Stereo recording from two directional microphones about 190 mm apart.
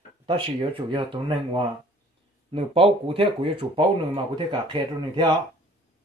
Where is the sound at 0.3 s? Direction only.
25° right (ahead or behind).